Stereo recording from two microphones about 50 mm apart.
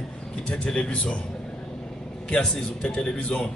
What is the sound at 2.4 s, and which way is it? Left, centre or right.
A man's voice, centre.